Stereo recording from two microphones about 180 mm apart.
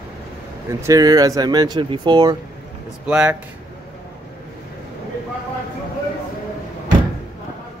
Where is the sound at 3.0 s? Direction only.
5° right (ahead or behind).